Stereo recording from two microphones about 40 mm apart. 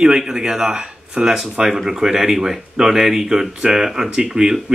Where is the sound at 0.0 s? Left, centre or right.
Centre.